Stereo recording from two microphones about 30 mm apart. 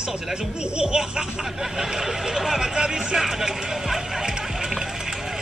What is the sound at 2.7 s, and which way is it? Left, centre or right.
Music, right.